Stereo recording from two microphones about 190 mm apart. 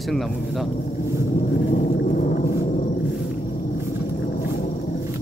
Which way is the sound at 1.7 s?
40° left (ahead or behind).